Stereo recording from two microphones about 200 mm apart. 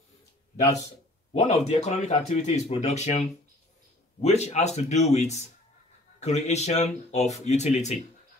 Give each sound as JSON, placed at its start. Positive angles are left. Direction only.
{"t": 1.3, "sound": "speech", "side_deg": 35}